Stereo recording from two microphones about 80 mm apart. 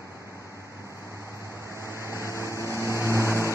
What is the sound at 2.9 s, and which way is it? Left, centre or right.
Vehicle, right.